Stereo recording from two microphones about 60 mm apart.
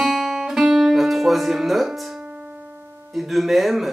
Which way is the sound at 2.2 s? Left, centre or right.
Centre.